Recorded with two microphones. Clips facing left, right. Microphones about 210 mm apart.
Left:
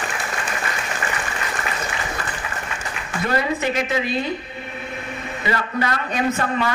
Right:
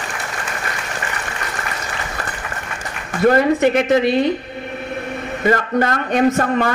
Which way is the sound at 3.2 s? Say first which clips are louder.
Right 9 dB; 50° right (ahead or behind).